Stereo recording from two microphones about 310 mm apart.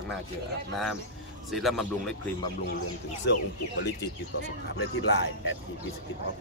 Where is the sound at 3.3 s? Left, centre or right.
Left.